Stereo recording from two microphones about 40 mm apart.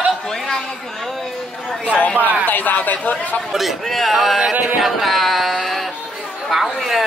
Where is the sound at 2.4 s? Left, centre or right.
Left.